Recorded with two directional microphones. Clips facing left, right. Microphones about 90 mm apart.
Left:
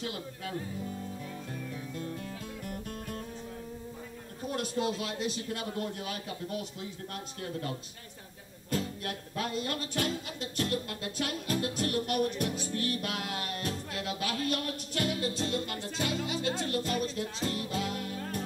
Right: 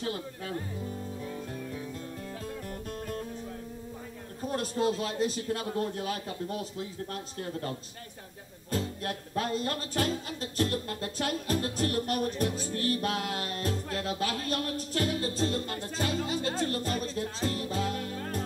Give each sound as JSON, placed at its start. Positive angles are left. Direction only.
{"t": 4.6, "sound": "music", "side_deg": -35}
{"t": 8.6, "sound": "music", "side_deg": -35}